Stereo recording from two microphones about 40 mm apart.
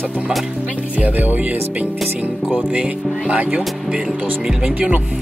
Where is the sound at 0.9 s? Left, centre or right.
Right.